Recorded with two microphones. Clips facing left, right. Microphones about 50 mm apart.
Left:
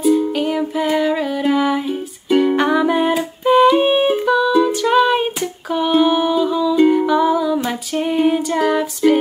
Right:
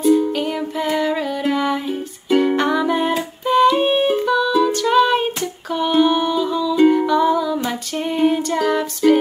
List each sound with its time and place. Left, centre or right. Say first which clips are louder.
0.0 s music: even; centre
7.1 s female singing: left 1 dB; centre